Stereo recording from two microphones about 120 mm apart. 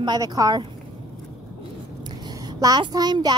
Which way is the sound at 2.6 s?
35° right (ahead or behind).